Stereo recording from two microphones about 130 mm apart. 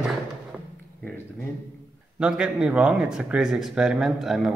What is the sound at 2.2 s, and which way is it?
Speech, 5° right (ahead or behind).